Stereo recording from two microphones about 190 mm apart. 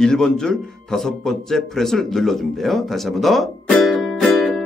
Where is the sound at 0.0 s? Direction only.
5° left (ahead or behind).